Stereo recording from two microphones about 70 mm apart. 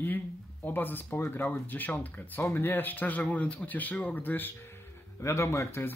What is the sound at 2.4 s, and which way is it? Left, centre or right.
Speech, left.